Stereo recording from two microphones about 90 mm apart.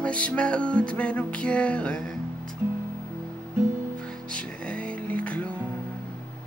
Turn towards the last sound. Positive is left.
turn(degrees=15)  # may be behind; listen again after turning